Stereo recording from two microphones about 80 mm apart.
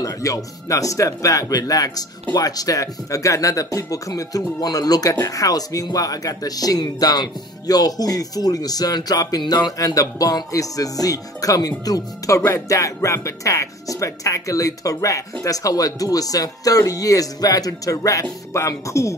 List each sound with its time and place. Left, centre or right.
0.0 s speech: left
12.4 s speech: left
12.6 s speech: left